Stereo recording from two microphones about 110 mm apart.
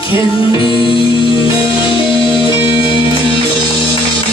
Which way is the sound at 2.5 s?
50° left (ahead or behind).